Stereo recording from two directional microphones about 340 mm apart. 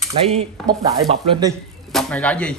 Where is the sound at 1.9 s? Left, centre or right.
Centre.